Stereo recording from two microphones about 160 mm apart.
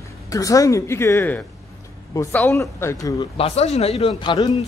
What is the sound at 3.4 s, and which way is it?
Speech, 40° left (ahead or behind).